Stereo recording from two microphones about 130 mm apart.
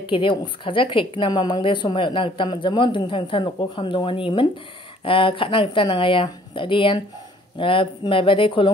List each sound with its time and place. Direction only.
0.0 s a woman's voice: 40° left (ahead or behind)